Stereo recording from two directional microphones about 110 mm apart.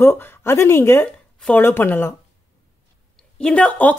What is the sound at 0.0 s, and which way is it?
A woman's voice, 20° left (ahead or behind).